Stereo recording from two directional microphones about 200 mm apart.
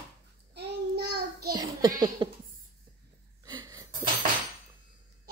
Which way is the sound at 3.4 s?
20° right (ahead or behind).